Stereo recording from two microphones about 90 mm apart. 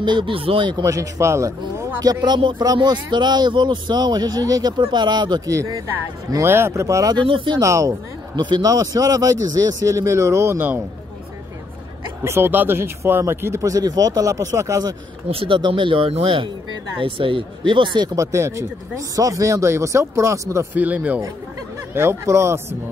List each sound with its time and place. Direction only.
0.0 s speech: 60° right (ahead or behind)
0.8 s speech: 35° right (ahead or behind)
2.0 s speech: 50° right (ahead or behind)
5.5 s speech: 35° right (ahead or behind)
7.2 s speech: 65° right (ahead or behind)
7.6 s speech: 35° right (ahead or behind)
8.4 s speech: 55° right (ahead or behind); by 10.8 s 25° right (ahead or behind)
12.2 s speech: 25° right (ahead or behind)
15.2 s speech: 85° right; by 18.1 s 60° right (ahead or behind)
18.1 s speech: 30° right (ahead or behind)
20.7 s speech: 15° right (ahead or behind)
21.9 s speech: 30° right (ahead or behind)